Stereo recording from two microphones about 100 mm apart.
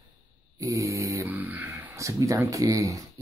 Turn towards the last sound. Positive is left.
turn(degrees=-35)  # may be behind; listen again after turning